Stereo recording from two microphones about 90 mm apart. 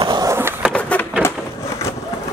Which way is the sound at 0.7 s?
15° left (ahead or behind).